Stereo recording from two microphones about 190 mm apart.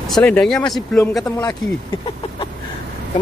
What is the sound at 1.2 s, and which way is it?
Speech, 15° left (ahead or behind).